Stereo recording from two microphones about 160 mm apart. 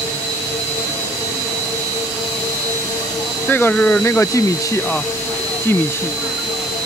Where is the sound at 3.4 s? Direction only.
10° left (ahead or behind).